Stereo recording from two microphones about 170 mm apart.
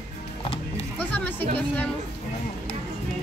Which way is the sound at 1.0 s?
10° left (ahead or behind).